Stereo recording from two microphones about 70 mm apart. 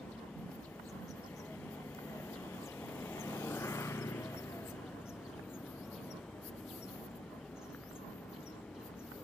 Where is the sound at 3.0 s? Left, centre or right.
Left.